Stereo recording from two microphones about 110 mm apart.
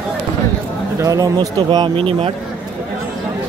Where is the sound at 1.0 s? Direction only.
30° right (ahead or behind).